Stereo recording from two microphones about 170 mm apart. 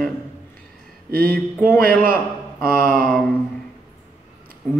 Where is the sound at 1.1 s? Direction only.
60° right (ahead or behind).